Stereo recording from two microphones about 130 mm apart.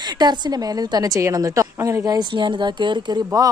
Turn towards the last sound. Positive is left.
turn(degrees=-35)  # may be behind; listen again after turning